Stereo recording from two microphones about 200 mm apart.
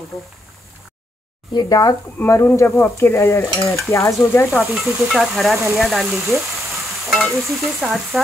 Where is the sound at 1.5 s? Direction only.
15° left (ahead or behind).